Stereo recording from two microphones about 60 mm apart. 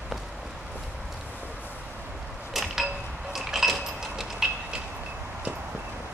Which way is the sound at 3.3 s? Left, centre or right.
Centre.